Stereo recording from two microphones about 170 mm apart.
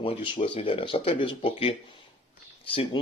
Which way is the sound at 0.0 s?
30° left (ahead or behind).